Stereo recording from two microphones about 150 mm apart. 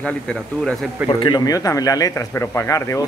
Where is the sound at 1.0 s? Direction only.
30° left (ahead or behind).